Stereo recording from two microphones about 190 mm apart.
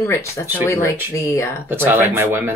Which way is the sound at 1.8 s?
10° right (ahead or behind).